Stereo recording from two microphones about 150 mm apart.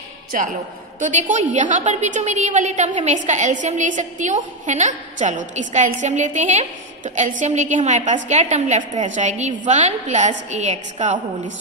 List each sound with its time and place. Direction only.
0.3 s a man's voice: 60° right (ahead or behind)